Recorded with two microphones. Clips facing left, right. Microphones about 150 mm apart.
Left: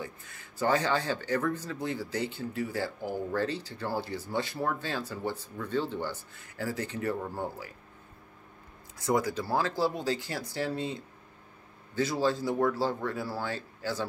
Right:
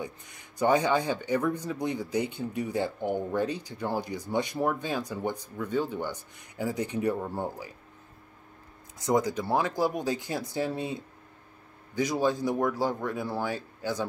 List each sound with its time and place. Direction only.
0.0 s speech: 20° right (ahead or behind)
8.9 s speech: 20° right (ahead or behind)